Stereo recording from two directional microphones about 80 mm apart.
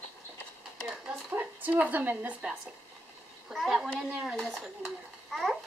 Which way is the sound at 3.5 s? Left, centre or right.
Centre.